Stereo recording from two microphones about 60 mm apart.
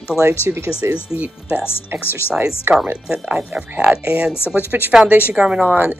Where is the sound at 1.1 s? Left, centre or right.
Right.